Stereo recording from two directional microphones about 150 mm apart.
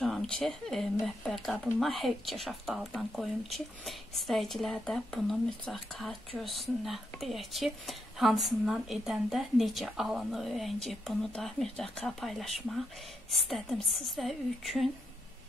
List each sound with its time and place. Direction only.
0.0 s speech: centre (ahead or behind)